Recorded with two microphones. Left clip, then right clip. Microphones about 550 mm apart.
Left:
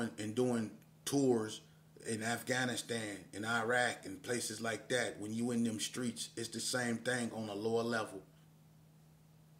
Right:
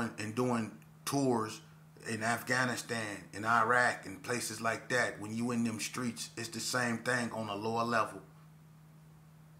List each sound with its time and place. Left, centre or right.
0.0 s speech: left